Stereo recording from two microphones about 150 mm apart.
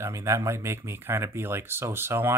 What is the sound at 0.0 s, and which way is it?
Speech, 20° right (ahead or behind).